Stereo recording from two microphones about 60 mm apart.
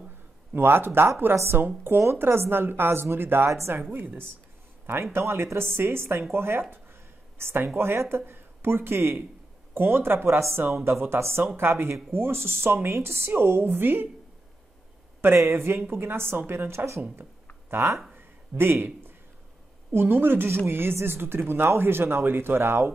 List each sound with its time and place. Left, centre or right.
0.5 s speech: right
5.1 s speech: right
15.2 s speech: right
18.1 s a sound: right
19.9 s speech: right